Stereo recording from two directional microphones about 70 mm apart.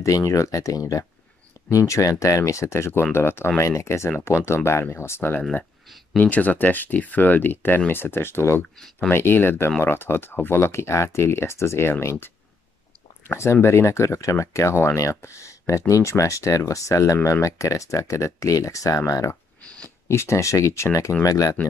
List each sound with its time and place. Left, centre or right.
0.0 s speech: left
3.6 s speech: left
6.1 s speech: left
8.7 s speech: centre
9.1 s speech: left
13.3 s speech: left
19.6 s a sound: centre
20.1 s speech: left